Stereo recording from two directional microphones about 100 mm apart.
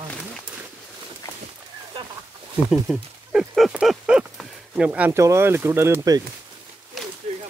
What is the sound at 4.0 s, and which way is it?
Clip-clop, 15° right (ahead or behind).